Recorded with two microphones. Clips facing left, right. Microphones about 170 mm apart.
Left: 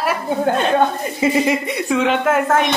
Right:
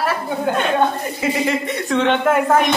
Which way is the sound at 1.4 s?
10° left (ahead or behind).